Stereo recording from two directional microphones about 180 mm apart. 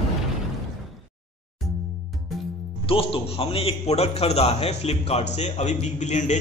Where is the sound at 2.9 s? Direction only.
30° left (ahead or behind).